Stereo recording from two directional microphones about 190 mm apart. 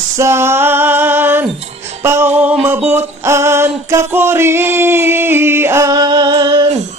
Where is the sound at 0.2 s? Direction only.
15° right (ahead or behind).